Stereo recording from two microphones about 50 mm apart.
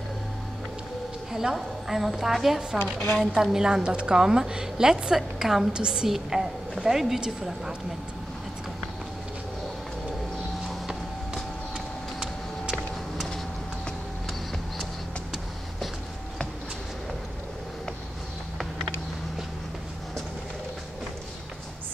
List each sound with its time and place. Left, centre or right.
1.3 s a woman's voice: centre
2.8 s speech: left
3.5 s a woman's voice: centre
6.0 s a woman's voice: centre
10.7 s vehicle: centre